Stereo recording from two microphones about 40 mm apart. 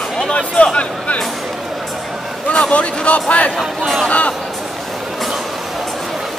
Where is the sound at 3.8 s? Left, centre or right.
Centre.